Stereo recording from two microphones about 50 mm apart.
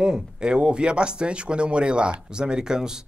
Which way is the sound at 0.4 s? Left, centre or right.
Centre.